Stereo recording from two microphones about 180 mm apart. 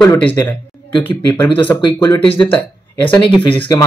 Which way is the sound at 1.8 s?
25° left (ahead or behind).